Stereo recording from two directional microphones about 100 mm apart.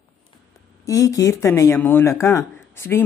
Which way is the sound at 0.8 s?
35° left (ahead or behind).